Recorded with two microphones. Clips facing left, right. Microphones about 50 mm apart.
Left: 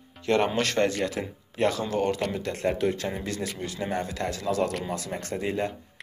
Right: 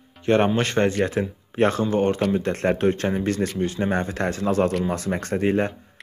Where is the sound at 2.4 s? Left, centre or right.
Right.